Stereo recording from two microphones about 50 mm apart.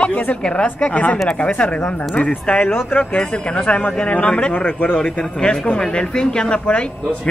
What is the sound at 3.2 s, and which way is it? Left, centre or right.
A man's voice, left.